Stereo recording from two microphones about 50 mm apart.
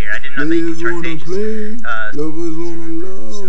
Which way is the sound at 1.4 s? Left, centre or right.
Centre.